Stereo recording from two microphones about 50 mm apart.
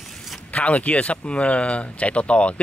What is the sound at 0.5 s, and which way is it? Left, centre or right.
Speech, left.